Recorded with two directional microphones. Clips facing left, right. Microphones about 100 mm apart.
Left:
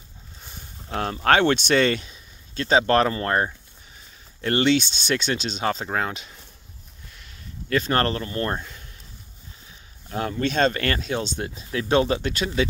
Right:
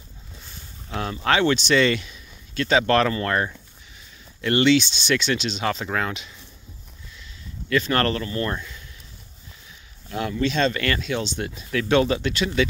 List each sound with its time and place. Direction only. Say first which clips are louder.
0.8 s speech: left 3 dB; 45° left (ahead or behind)
7.7 s speech: right 1 dB; 35° left (ahead or behind)
10.0 s speech: right 1 dB; 35° left (ahead or behind)